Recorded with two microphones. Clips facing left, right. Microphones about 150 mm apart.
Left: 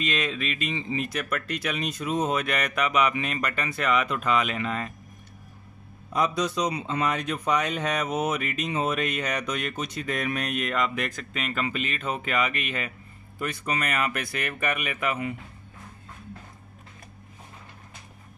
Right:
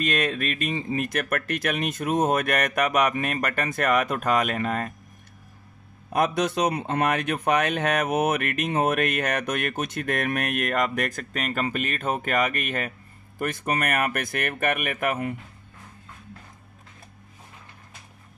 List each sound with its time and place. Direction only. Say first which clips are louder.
0.0 s speech: right 3 dB; 50° right (ahead or behind)
6.1 s speech: right 2 dB; 55° right (ahead or behind)